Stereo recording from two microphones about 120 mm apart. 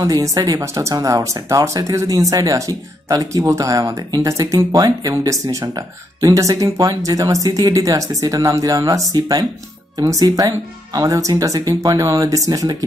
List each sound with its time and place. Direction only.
0.0 s speech: 25° right (ahead or behind)